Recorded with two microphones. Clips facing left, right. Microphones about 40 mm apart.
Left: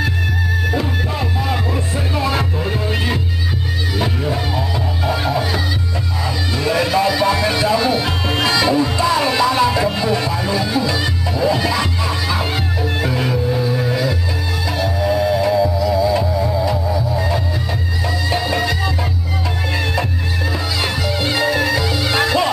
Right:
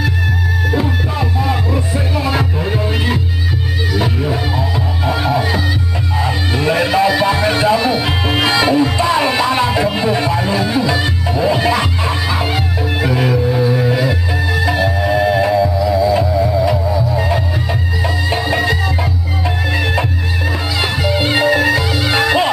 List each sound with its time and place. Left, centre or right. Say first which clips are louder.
2.1 s music: right 1 dB; centre
6.2 s music: right 3 dB; right
15.6 s music: right 2 dB; centre
20.8 s music: right 5 dB; centre